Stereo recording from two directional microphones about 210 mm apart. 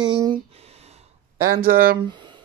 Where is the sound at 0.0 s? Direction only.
20° right (ahead or behind).